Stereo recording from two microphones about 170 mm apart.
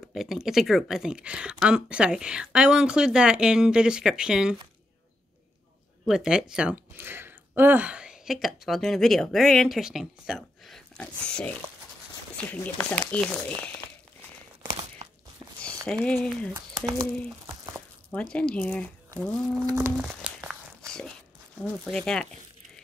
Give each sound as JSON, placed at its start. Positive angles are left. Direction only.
{"t": 0.1, "sound": "speech", "side_deg": 0}
{"t": 6.0, "sound": "speech", "side_deg": -5}
{"t": 14.6, "sound": "a sound", "side_deg": -30}
{"t": 16.1, "sound": "speech", "side_deg": 0}
{"t": 16.5, "sound": "speech", "side_deg": -20}
{"t": 18.3, "sound": "speech", "side_deg": 5}
{"t": 19.7, "sound": "a sound", "side_deg": -10}
{"t": 21.8, "sound": "speech", "side_deg": 5}